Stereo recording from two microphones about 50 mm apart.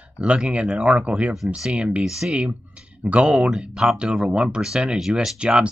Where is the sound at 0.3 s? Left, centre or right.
Right.